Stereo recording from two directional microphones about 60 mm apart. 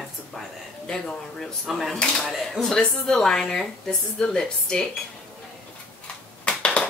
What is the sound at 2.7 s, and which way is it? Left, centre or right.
A woman's voice, centre.